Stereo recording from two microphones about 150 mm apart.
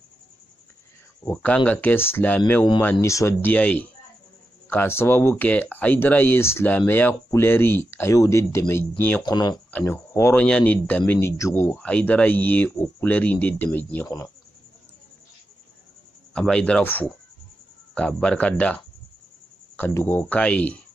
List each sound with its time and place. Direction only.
1.2 s speech: 10° left (ahead or behind)
9.2 s speech: 25° left (ahead or behind)
9.7 s speech: 10° left (ahead or behind)
14.0 s speech: 25° left (ahead or behind)
16.3 s speech: 5° left (ahead or behind)
19.8 s speech: 15° left (ahead or behind)